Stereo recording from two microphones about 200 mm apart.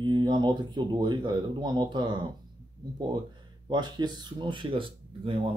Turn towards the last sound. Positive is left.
turn(degrees=-25)  # may be behind; listen again after turning